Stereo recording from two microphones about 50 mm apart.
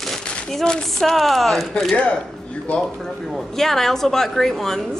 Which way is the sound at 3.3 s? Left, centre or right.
Centre.